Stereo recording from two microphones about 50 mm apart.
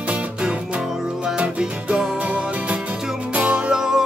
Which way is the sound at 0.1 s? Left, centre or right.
Right.